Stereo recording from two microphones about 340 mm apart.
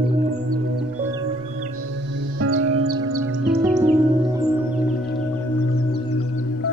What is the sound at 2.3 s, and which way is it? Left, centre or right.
Music, right.